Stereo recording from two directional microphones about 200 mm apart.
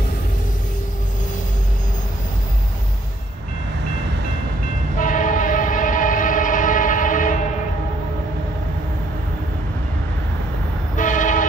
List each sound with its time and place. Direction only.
4.9 s train: 40° left (ahead or behind)
11.0 s vehicle: 40° left (ahead or behind)